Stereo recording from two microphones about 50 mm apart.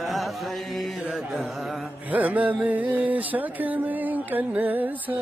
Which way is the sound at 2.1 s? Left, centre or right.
Right.